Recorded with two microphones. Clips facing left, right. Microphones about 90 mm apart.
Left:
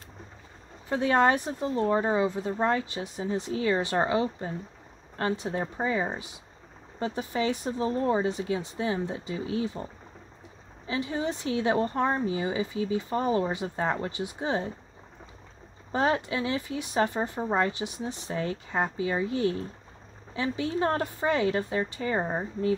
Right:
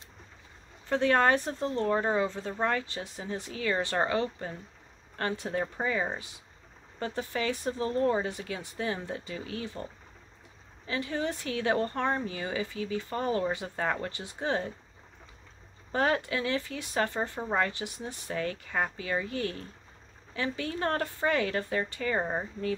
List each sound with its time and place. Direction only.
0.8 s a woman's voice: 15° left (ahead or behind)
10.9 s a woman's voice: 20° left (ahead or behind)
15.9 s a woman's voice: 20° left (ahead or behind)